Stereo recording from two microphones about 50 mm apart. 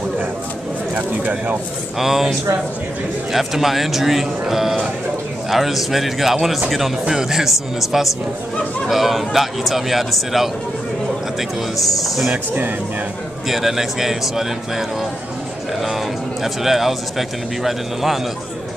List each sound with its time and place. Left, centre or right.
0.9 s speech: right
2.0 s speech: centre
3.3 s speech: centre
13.5 s speech: centre
16.6 s speech: centre